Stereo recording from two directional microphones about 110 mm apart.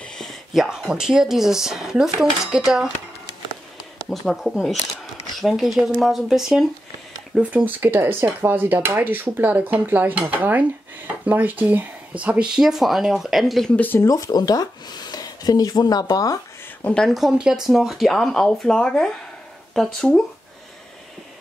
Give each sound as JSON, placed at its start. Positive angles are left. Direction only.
{"t": 0.0, "sound": "speech", "side_deg": 5}
{"t": 4.1, "sound": "speech", "side_deg": 0}
{"t": 7.5, "sound": "speech", "side_deg": -20}
{"t": 13.7, "sound": "speech", "side_deg": 15}
{"t": 14.0, "sound": "speech", "side_deg": 30}
{"t": 16.8, "sound": "speech", "side_deg": 10}